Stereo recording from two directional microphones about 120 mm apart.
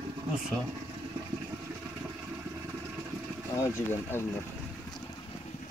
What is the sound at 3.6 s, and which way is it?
Speech, 20° left (ahead or behind).